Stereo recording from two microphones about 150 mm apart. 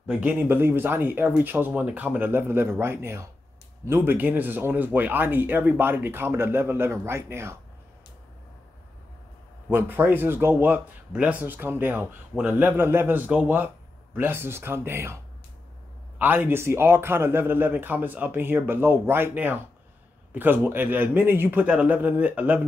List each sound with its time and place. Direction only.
0.0 s speech: 5° right (ahead or behind)
0.4 s speech: 15° right (ahead or behind)
9.7 s speech: 15° right (ahead or behind)
16.2 s speech: 15° right (ahead or behind)